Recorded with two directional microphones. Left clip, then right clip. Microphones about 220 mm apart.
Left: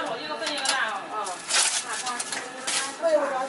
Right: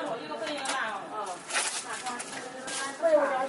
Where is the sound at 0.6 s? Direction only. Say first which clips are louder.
Left 8 dB; 15° right (ahead or behind).